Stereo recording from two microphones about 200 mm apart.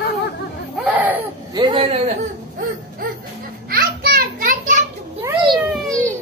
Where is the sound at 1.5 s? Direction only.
25° right (ahead or behind).